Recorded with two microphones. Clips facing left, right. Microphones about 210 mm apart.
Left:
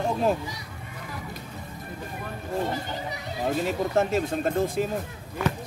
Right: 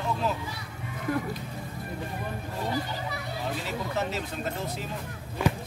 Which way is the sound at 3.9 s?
50° left (ahead or behind).